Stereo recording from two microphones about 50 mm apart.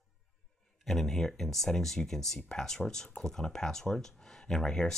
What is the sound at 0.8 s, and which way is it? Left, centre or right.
Speech, centre.